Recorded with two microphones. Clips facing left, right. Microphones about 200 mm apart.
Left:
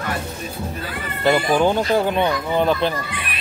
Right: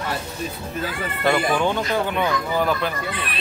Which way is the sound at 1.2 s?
35° left (ahead or behind).